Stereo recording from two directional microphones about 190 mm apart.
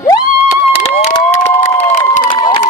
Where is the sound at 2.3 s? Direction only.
25° left (ahead or behind).